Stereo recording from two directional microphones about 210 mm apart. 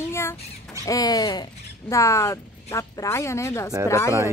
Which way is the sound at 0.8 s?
15° left (ahead or behind).